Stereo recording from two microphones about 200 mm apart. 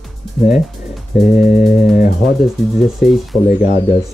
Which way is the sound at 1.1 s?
Centre (ahead or behind).